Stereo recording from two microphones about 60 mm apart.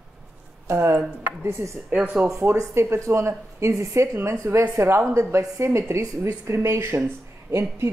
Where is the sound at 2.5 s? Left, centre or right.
Right.